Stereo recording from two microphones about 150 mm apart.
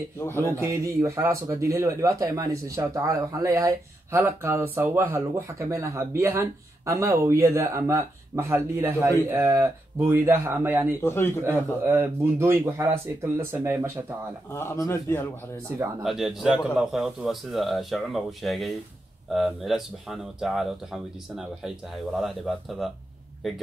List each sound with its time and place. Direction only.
0.2 s a man's voice: 15° left (ahead or behind)
0.5 s speech: 20° right (ahead or behind)
11.0 s a man's voice: 15° left (ahead or behind)
11.8 s speech: 15° right (ahead or behind)
14.5 s a man's voice: 20° left (ahead or behind)
16.0 s speech: centre (ahead or behind)